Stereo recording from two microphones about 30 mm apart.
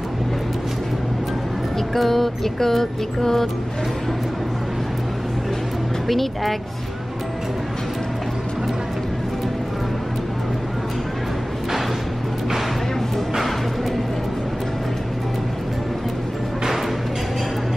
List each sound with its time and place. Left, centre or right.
2.0 s music: centre
6.0 s speech: centre